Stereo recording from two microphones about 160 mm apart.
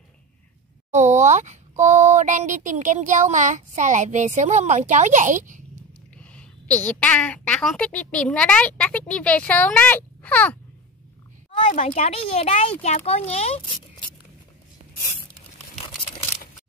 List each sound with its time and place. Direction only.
0.9 s speech: 50° right (ahead or behind)
6.2 s a woman's voice: 10° left (ahead or behind)
11.7 s speech: 50° left (ahead or behind)